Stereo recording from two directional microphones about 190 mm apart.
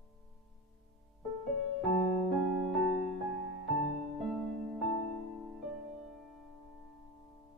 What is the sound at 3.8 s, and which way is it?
Music, centre (ahead or behind).